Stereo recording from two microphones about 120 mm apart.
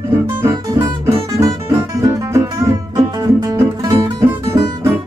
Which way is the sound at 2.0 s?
25° right (ahead or behind).